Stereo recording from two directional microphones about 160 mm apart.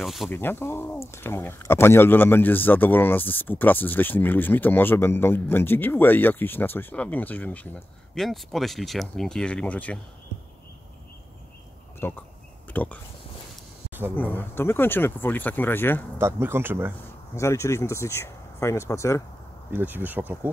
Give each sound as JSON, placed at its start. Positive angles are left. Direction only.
{"t": 0.0, "sound": "speech", "side_deg": 0}
{"t": 0.3, "sound": "speech", "side_deg": 15}
{"t": 12.0, "sound": "speech", "side_deg": 10}
{"t": 14.1, "sound": "speech", "side_deg": 10}
{"t": 16.2, "sound": "speech", "side_deg": -15}
{"t": 17.4, "sound": "speech", "side_deg": 15}
{"t": 19.7, "sound": "speech", "side_deg": -10}